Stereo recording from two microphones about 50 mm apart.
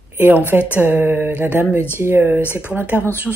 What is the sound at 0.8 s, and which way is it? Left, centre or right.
Speech, right.